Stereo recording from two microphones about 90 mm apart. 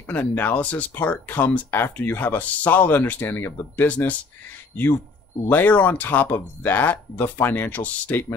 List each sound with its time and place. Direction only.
0.0 s speech: 20° left (ahead or behind)
5.5 s speech: 20° left (ahead or behind)